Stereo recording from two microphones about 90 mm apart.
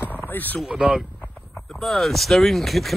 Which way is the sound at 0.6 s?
10° right (ahead or behind).